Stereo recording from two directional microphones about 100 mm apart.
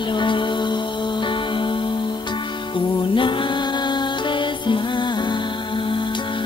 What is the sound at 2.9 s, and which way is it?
Music, 55° left (ahead or behind).